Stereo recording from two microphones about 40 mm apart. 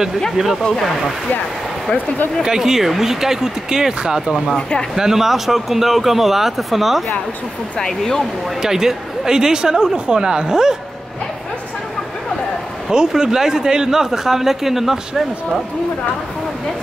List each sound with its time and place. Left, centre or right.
2.4 s speech: centre
4.6 s speech: left
4.9 s speech: centre
7.8 s speech: centre
8.6 s speech: centre
12.9 s speech: centre